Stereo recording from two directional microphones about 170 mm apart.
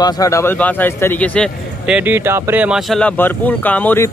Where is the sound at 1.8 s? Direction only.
10° right (ahead or behind); by 4.0 s 10° left (ahead or behind).